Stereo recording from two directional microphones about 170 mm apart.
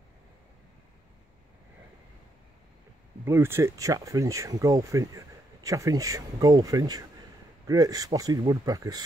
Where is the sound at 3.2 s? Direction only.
15° right (ahead or behind).